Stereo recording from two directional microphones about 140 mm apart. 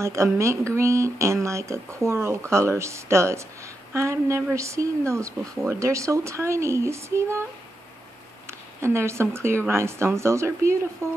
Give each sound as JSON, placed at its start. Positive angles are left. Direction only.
{"t": 0.0, "sound": "speech", "side_deg": -20}
{"t": 8.5, "sound": "speech", "side_deg": -20}